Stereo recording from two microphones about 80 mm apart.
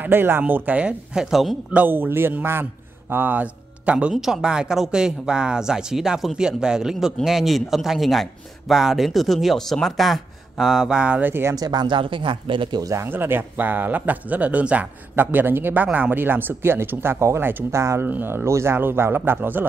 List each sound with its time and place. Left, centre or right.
0.0 s speech: right; by 1.6 s centre
1.7 s a man's voice: right
4.1 s a man's voice: centre; by 11.5 s right
11.5 s speech: right
12.8 s speech: right
13.1 s speech: right
18.0 s speech: right